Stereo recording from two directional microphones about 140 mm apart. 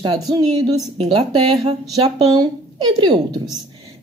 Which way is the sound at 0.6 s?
25° right (ahead or behind).